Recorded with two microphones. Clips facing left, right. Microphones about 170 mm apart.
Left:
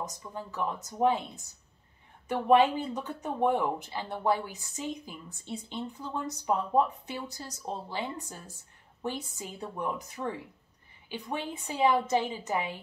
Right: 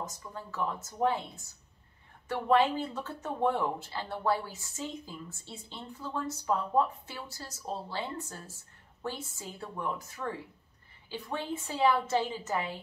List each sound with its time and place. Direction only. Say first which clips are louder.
0.0 s speech: left 3 dB; 20° left (ahead or behind)